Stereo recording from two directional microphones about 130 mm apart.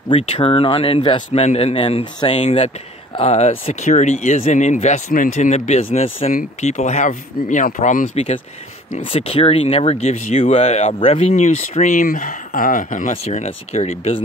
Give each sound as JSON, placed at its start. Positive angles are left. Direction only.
{"t": 0.1, "sound": "speech", "side_deg": 50}
{"t": 6.3, "sound": "speech", "side_deg": 60}
{"t": 9.0, "sound": "speech", "side_deg": 45}
{"t": 13.1, "sound": "speech", "side_deg": 55}